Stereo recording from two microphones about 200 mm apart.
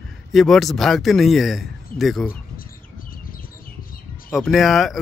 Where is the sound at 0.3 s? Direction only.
Centre (ahead or behind).